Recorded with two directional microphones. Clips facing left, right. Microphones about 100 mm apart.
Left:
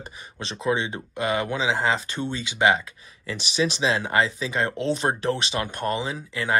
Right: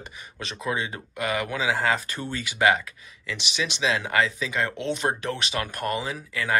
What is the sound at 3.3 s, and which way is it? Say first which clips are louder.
Speech: left 5 dB; 35° left (ahead or behind).